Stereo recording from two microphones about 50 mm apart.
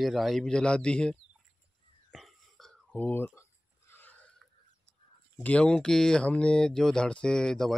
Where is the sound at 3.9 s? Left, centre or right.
Left.